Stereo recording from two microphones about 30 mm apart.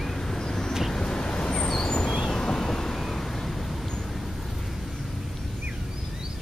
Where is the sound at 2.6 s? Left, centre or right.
Centre.